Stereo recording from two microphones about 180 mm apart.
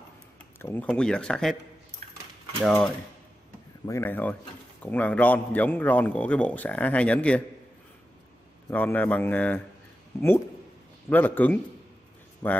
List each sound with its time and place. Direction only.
0.6 s speech: 10° left (ahead or behind)
2.6 s a man's voice: 5° left (ahead or behind)
8.6 s a man's voice: 10° left (ahead or behind)
11.1 s a man's voice: 10° left (ahead or behind)